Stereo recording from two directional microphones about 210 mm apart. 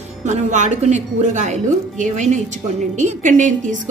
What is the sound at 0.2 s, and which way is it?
Speech, 35° right (ahead or behind).